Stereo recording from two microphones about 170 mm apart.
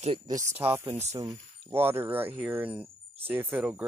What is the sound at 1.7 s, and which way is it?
Speech, 15° right (ahead or behind).